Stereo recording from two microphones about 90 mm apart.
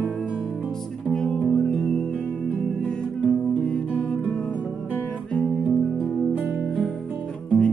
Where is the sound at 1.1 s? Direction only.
5° left (ahead or behind).